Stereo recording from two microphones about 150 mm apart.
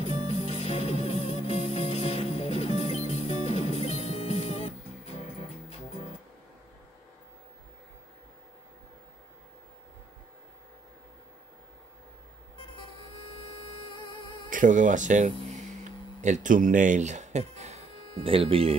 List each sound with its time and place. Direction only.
0.0 s music: 45° left (ahead or behind)
14.5 s speech: 60° right (ahead or behind)
15.8 s music: 55° right (ahead or behind); by 18.8 s 40° right (ahead or behind)